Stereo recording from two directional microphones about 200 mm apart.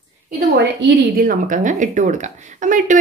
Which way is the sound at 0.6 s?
50° right (ahead or behind).